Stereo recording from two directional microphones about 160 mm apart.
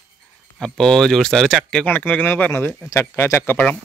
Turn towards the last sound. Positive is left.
turn(degrees=10)  # may be behind; listen again after turning